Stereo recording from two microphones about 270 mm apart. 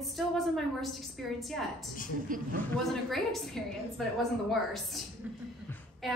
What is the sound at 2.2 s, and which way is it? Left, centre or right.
Speech, right.